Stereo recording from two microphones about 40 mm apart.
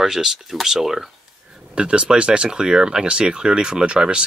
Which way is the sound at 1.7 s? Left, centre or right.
Right.